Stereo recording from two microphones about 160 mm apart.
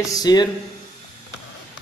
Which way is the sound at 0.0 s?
25° left (ahead or behind).